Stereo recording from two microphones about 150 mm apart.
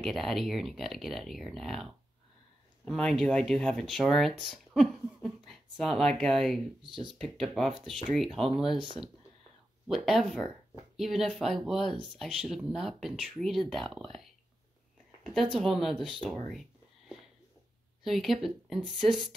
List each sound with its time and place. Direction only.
0.0 s speech: centre (ahead or behind)
9.8 s speech: centre (ahead or behind)
15.5 s speech: centre (ahead or behind)
18.0 s speech: centre (ahead or behind)